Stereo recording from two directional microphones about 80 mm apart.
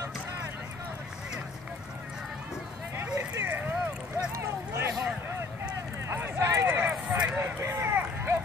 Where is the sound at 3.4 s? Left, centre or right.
Right.